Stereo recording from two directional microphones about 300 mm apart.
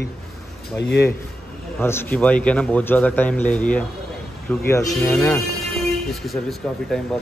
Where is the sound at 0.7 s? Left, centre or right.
Left.